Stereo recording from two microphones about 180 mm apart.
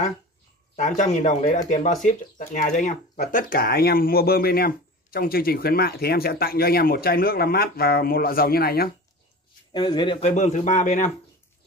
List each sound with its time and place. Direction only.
0.7 s a man's voice: 40° left (ahead or behind); by 8.9 s 60° left (ahead or behind)
9.7 s speech: 25° left (ahead or behind)
10.2 s a man's voice: 40° left (ahead or behind)